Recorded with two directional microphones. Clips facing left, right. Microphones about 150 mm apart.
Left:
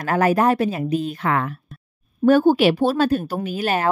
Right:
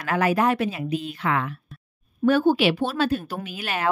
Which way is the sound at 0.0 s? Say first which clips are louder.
Left 4 dB; 45° left (ahead or behind).